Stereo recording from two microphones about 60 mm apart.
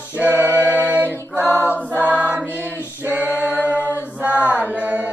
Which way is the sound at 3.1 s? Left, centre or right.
Right.